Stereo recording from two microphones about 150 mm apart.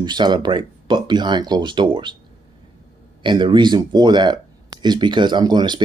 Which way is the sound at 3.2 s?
30° right (ahead or behind).